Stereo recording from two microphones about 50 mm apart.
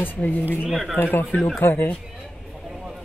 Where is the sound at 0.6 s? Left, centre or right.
Centre.